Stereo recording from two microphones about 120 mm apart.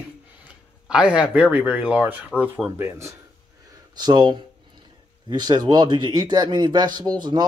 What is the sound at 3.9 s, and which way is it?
A man's voice, 35° right (ahead or behind).